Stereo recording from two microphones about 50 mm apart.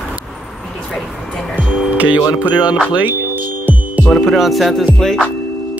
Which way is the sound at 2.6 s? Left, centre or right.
Centre.